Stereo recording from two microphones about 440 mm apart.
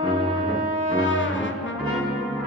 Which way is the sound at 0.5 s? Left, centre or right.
Left.